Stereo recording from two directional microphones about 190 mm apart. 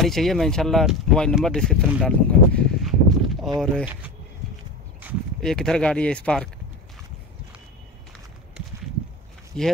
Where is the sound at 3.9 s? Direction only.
5° right (ahead or behind).